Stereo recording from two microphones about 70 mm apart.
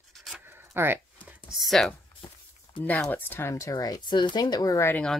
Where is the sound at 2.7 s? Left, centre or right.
Left.